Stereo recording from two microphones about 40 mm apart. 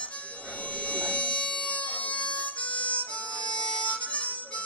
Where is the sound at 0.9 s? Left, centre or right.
Left.